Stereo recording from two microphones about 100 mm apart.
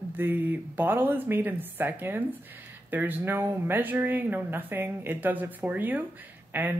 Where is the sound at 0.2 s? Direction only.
20° right (ahead or behind).